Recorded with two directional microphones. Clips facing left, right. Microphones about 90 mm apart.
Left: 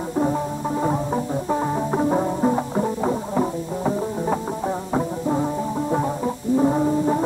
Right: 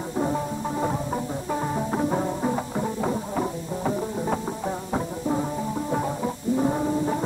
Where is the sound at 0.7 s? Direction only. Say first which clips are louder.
Left 5 dB; 15° left (ahead or behind).